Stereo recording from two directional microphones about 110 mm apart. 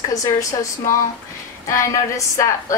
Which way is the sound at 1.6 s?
30° left (ahead or behind).